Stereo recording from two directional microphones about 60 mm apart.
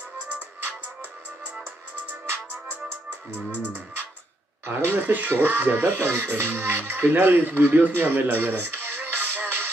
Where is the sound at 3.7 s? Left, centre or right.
Right.